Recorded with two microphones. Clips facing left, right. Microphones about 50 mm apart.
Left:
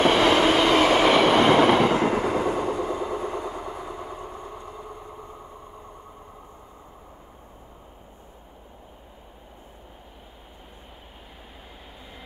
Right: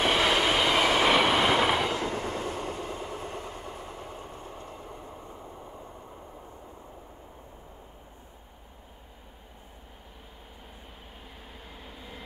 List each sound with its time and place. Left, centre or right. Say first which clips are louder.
0.0 s train: left 6 dB; centre
1.8 s train: left 8 dB; left
3.1 s vehicle: left 8 dB; left